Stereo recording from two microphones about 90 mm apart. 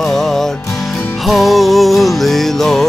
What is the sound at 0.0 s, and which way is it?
Music, 5° left (ahead or behind).